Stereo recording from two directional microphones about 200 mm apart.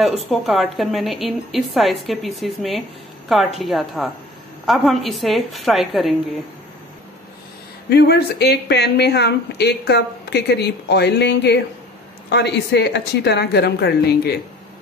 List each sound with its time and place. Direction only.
0.0 s a woman's voice: centre (ahead or behind)
7.9 s speech: 55° left (ahead or behind)